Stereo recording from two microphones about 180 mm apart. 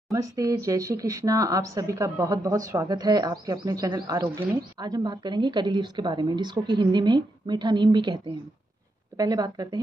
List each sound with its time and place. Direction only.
0.1 s speech: 20° right (ahead or behind)